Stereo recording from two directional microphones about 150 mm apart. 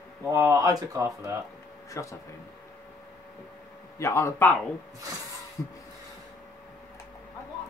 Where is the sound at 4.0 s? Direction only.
20° left (ahead or behind).